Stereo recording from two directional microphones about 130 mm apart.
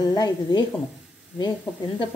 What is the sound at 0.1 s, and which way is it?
Speech, 30° left (ahead or behind).